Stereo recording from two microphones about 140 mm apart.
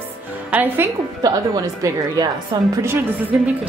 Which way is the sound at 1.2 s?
25° right (ahead or behind).